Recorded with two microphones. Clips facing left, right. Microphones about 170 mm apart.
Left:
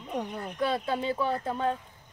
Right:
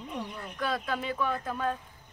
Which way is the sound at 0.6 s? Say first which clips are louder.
Left 3 dB; 30° left (ahead or behind).